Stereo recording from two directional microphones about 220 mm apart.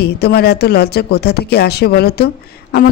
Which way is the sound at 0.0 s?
45° left (ahead or behind).